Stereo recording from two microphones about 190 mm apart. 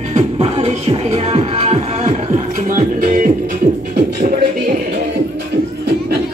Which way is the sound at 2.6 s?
45° right (ahead or behind).